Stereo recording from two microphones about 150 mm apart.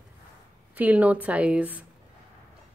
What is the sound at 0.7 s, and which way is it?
A woman's voice, 10° right (ahead or behind).